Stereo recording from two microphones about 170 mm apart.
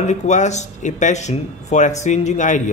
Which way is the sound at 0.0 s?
45° left (ahead or behind).